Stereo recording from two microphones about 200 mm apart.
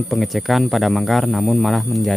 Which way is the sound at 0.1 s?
Centre (ahead or behind).